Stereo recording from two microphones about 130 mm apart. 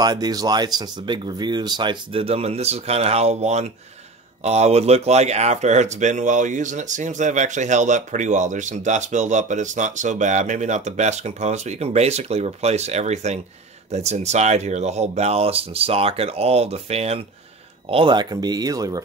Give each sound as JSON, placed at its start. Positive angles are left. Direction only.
{"t": 0.0, "sound": "speech", "side_deg": -30}